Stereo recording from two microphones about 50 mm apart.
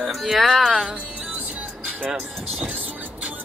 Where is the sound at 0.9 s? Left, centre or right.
Centre.